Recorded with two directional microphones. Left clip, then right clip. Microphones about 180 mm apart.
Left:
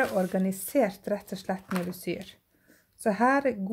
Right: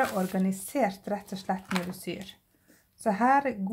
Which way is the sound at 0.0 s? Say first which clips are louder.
Left 2 dB; 40° left (ahead or behind).